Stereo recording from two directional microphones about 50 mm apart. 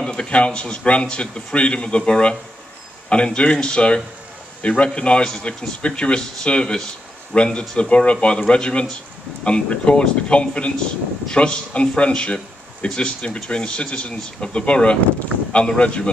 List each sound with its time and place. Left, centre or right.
0.0 s a man's voice: centre